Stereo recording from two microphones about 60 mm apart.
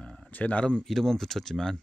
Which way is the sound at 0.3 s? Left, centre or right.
Left.